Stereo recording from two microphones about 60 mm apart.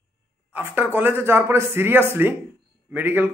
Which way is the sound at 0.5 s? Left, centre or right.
Right.